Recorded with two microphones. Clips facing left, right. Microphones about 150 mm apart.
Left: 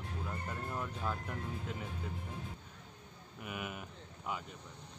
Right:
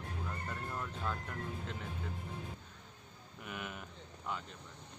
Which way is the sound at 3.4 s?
5° left (ahead or behind).